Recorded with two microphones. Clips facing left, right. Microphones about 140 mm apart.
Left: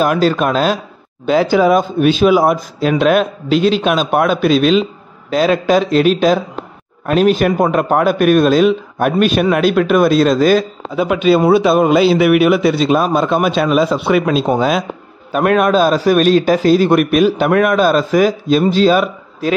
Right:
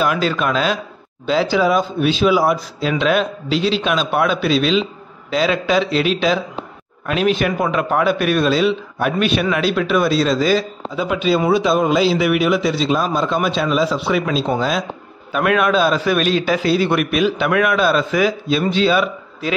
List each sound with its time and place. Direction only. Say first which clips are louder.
0.0 s a man's voice: left 5 dB; 45° left (ahead or behind)
15.3 s a man's voice: left 4 dB; 40° left (ahead or behind)